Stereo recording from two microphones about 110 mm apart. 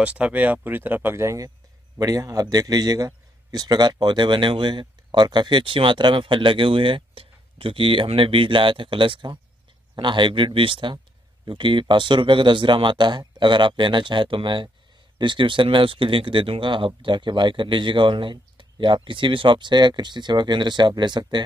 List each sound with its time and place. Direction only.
0.0 s a man's voice: 10° right (ahead or behind); by 21.4 s 40° right (ahead or behind)